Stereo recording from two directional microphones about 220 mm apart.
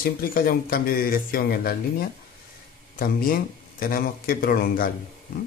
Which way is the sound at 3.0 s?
40° left (ahead or behind).